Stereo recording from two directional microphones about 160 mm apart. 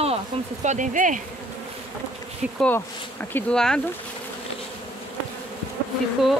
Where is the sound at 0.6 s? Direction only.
55° right (ahead or behind).